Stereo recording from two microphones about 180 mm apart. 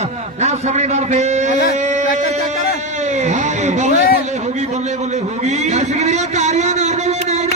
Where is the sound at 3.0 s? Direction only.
40° right (ahead or behind).